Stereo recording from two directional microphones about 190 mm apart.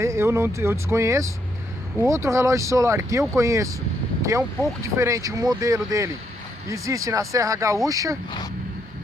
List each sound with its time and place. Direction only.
0.0 s speech: 15° right (ahead or behind)